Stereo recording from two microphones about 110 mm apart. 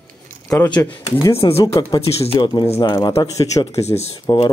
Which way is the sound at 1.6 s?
35° left (ahead or behind).